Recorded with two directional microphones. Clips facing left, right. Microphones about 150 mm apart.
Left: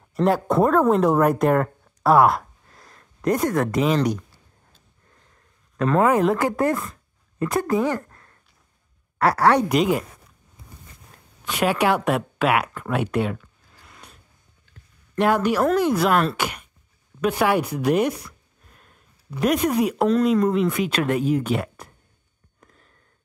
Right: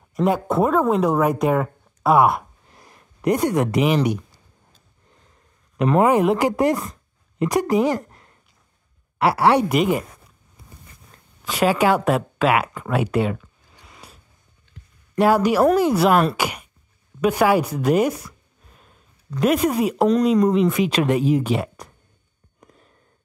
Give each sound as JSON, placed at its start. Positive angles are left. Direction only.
{"t": 0.1, "sound": "speech", "side_deg": 0}
{"t": 2.7, "sound": "speech", "side_deg": -15}
{"t": 5.8, "sound": "a woman's voice", "side_deg": -20}
{"t": 9.7, "sound": "speech", "side_deg": -5}
{"t": 11.4, "sound": "speech", "side_deg": 0}
{"t": 13.8, "sound": "a sound", "side_deg": -5}
{"t": 15.1, "sound": "a woman's voice", "side_deg": -5}
{"t": 17.7, "sound": "a sound", "side_deg": 0}
{"t": 19.4, "sound": "a woman's voice", "side_deg": -5}
{"t": 22.6, "sound": "a sound", "side_deg": -15}